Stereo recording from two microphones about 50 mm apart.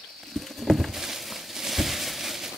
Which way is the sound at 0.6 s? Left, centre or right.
Centre.